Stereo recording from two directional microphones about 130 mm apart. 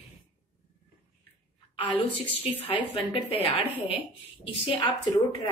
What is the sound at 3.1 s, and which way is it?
Speech, 50° left (ahead or behind).